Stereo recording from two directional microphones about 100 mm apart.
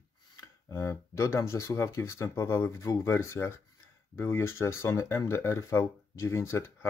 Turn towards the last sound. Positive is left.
turn(degrees=25)  # may be behind; listen again after turning